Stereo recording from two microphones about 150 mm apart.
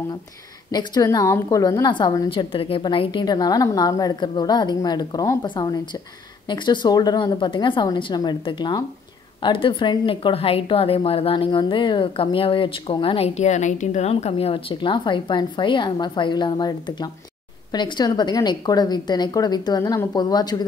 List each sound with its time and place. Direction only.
0.7 s a woman's voice: 25° left (ahead or behind)